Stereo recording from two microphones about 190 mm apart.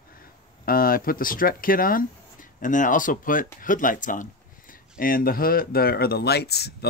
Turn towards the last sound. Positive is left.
turn(degrees=60)  # may be behind; listen again after turning